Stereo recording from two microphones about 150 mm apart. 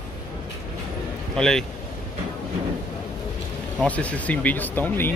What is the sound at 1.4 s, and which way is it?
Speech, 5° left (ahead or behind).